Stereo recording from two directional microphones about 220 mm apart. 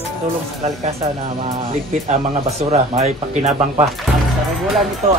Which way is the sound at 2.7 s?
30° right (ahead or behind).